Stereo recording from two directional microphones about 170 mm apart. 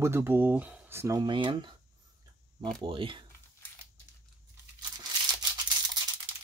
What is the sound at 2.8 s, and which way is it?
Speech, 30° right (ahead or behind).